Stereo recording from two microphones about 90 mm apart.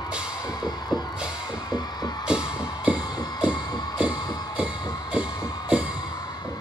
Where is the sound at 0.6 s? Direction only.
50° left (ahead or behind).